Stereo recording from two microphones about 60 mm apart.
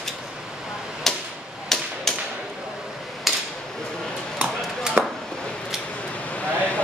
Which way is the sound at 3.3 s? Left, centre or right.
Centre.